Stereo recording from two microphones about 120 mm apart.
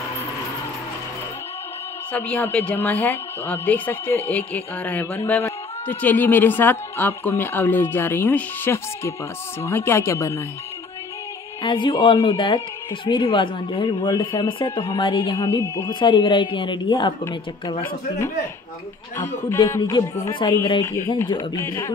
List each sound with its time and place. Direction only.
2.1 s speech: 15° left (ahead or behind)
11.6 s speech: 40° left (ahead or behind)
15.3 s speech: 25° left (ahead or behind)
15.9 s speech: 45° left (ahead or behind)
19.1 s speech: 20° left (ahead or behind)
19.8 s speech: 35° left (ahead or behind)
20.8 s speech: 25° left (ahead or behind)